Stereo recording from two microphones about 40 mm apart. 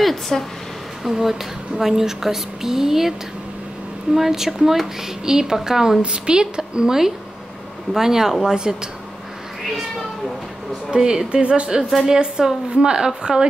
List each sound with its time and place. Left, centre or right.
0.3 s speech: centre
1.0 s a woman's voice: centre
5.2 s a woman's voice: centre
10.9 s a woman's voice: centre
11.4 s a woman's voice: right